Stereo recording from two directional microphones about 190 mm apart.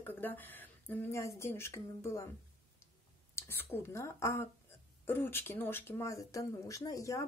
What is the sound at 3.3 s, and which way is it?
Speech, 10° left (ahead or behind).